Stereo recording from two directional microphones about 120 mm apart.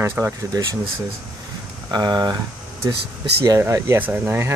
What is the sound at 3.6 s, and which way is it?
Speech, 20° right (ahead or behind).